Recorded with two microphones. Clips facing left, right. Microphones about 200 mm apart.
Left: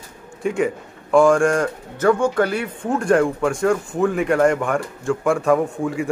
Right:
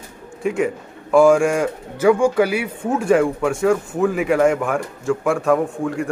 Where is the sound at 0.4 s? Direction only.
Centre (ahead or behind).